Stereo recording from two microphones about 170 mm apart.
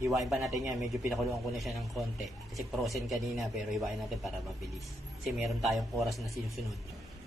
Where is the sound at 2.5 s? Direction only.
Centre (ahead or behind).